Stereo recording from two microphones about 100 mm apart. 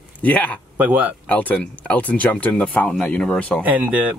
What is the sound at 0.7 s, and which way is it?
Speech, 15° right (ahead or behind).